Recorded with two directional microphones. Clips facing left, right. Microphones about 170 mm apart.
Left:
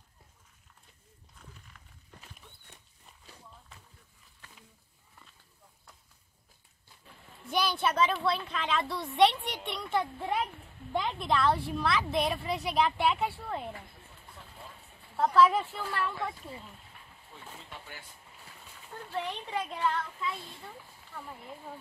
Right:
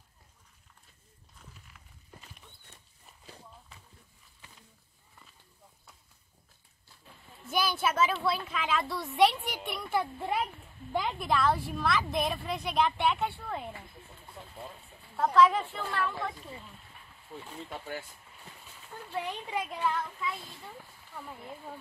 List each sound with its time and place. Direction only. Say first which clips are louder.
1.4 s horse: left 1 dB; 5° right (ahead or behind)
7.4 s a woman's voice: even; centre (ahead or behind)
15.1 s a woman's voice: even; 5° left (ahead or behind)
17.3 s speech: right 6 dB; 50° right (ahead or behind)
19.1 s speech: even; 10° right (ahead or behind)